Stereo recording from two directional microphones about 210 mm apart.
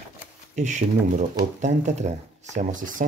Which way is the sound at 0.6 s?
35° right (ahead or behind).